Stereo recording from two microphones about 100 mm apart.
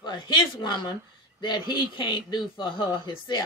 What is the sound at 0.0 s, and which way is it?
A woman's voice, 50° left (ahead or behind).